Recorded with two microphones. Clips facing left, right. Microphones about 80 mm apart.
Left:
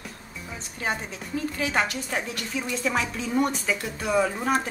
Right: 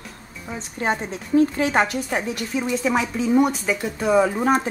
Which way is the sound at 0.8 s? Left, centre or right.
Right.